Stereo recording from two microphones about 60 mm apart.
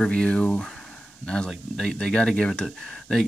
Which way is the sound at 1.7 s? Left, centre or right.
Centre.